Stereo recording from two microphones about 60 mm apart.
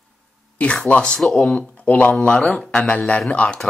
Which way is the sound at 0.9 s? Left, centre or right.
Centre.